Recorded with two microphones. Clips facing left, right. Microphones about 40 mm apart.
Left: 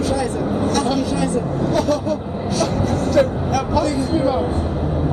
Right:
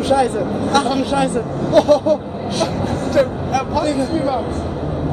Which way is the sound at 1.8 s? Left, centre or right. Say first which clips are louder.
Right 9 dB; right.